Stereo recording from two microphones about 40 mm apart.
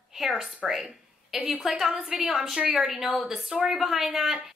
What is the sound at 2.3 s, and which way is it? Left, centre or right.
A woman's voice, centre.